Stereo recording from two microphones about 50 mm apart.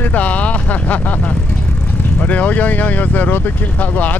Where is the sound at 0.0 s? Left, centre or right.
Left.